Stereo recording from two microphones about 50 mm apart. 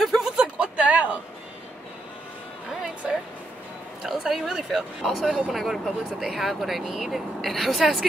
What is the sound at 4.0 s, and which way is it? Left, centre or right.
Speech, centre.